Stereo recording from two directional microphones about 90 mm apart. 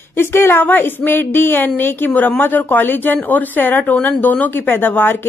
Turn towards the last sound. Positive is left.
turn(degrees=25)  # may be behind; listen again after turning